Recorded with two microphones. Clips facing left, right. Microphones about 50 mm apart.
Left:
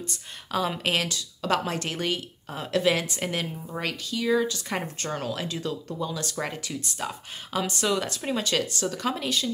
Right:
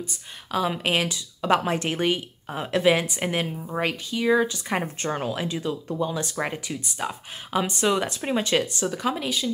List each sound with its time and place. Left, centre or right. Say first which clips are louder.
0.1 s a woman's voice: right 1 dB; centre